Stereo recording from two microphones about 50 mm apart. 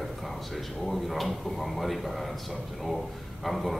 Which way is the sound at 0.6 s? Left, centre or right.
Centre.